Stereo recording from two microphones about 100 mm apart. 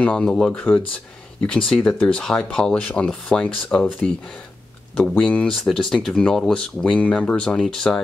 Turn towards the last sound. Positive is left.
turn(degrees=5)  # may be behind; listen again after turning